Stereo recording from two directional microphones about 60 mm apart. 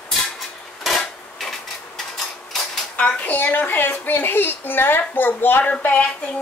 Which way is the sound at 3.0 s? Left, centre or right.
Left.